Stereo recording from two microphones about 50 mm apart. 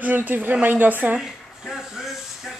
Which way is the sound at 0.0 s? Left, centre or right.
Right.